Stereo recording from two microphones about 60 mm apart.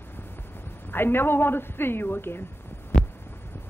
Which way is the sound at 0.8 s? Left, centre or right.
Left.